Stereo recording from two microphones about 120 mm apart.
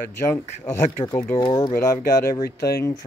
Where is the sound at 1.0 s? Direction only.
40° left (ahead or behind).